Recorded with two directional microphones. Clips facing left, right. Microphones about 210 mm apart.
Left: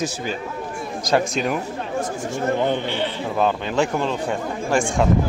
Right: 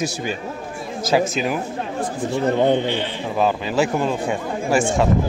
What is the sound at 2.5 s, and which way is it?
Speech, 20° right (ahead or behind).